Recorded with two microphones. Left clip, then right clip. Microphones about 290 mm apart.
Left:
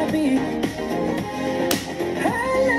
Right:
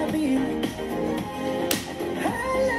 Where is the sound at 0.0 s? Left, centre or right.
Left.